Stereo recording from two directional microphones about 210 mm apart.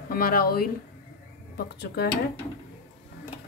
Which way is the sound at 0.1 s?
45° left (ahead or behind).